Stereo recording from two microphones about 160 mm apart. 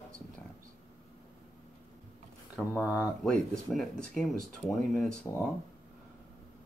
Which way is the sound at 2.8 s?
10° right (ahead or behind).